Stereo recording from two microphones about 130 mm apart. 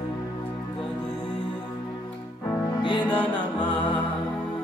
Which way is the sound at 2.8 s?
35° left (ahead or behind).